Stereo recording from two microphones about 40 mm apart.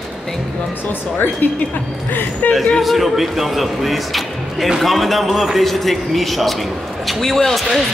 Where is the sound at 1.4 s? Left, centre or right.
Left.